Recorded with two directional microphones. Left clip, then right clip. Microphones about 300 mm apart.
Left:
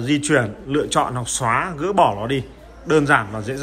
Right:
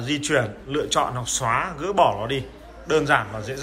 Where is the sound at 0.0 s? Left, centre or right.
Centre.